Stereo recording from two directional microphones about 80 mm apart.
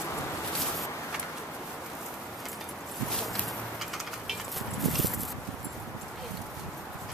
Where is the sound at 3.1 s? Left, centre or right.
Centre.